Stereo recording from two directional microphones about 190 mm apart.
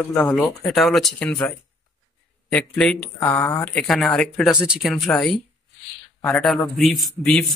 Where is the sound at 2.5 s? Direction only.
5° left (ahead or behind).